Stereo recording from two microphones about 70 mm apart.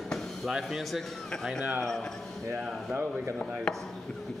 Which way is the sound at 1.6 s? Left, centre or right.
Right.